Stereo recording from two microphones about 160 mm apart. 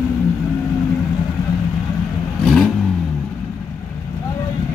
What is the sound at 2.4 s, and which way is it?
Vehicle, centre (ahead or behind).